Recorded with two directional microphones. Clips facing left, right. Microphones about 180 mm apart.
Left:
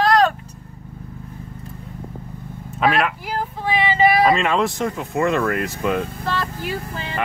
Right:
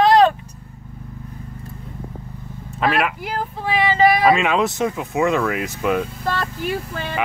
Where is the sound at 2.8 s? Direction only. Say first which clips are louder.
Left 1 dB; centre (ahead or behind).